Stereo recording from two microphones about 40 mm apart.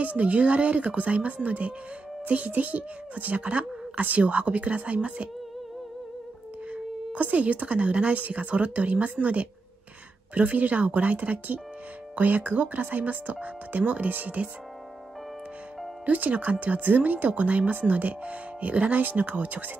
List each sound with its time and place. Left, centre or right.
0.0 s speech: right
6.7 s speech: right
16.1 s speech: right